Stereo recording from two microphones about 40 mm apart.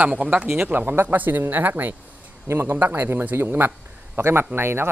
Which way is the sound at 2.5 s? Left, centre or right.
Right.